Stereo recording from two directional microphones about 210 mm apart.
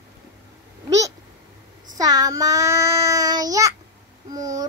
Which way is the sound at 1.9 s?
20° right (ahead or behind).